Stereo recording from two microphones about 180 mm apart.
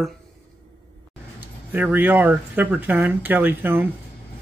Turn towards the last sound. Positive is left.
turn(degrees=-10)  # may be behind; listen again after turning